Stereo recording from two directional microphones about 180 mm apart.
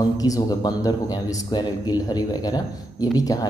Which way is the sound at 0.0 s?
20° left (ahead or behind).